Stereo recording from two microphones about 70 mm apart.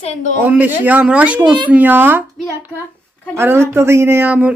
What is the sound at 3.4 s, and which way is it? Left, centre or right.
Speech, right.